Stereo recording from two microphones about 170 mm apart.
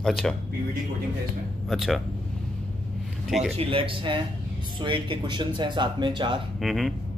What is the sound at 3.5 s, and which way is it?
Speech, 30° right (ahead or behind).